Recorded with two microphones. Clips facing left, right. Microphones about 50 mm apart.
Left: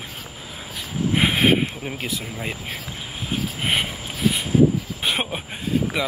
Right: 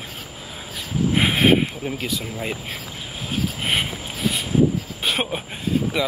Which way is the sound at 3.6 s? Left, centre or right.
Centre.